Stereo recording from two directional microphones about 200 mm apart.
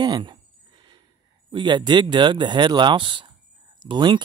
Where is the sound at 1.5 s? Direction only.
20° right (ahead or behind).